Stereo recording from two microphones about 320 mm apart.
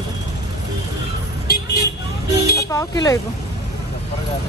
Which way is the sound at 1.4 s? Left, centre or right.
Left.